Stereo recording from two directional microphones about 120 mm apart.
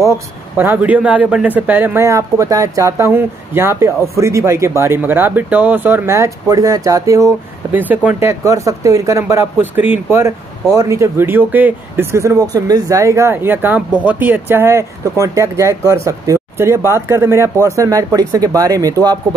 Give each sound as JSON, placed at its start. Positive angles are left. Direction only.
{"t": 0.6, "sound": "speech", "side_deg": -15}
{"t": 7.9, "sound": "speech", "side_deg": -15}